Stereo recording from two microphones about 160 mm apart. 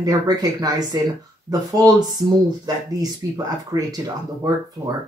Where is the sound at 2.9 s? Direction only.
20° right (ahead or behind).